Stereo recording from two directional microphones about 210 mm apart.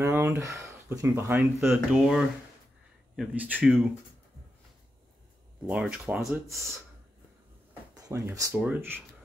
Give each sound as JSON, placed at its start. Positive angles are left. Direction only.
{"t": 0.0, "sound": "speech", "side_deg": -10}
{"t": 3.2, "sound": "speech", "side_deg": -5}
{"t": 5.7, "sound": "speech", "side_deg": -5}
{"t": 7.9, "sound": "speech", "side_deg": -15}